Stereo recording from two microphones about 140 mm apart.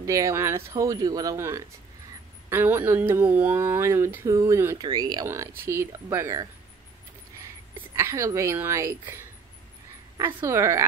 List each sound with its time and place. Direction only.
0.0 s speech: 20° right (ahead or behind)
7.9 s speech: 20° right (ahead or behind)